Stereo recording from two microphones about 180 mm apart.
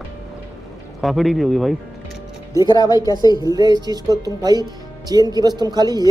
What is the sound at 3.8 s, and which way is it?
Speech, 20° right (ahead or behind).